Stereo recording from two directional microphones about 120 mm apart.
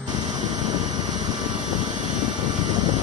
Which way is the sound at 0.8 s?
35° right (ahead or behind).